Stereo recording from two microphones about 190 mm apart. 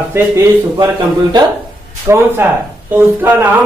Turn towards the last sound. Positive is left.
turn(degrees=-10)  # may be behind; listen again after turning